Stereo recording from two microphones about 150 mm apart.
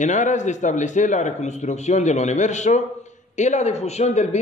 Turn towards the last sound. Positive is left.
turn(degrees=50)  # may be behind; listen again after turning